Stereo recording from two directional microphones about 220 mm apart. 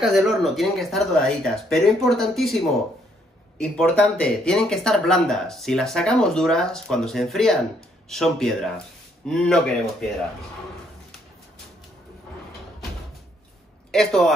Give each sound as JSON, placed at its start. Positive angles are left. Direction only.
{"t": 0.0, "sound": "speech", "side_deg": 0}
{"t": 13.9, "sound": "speech", "side_deg": 0}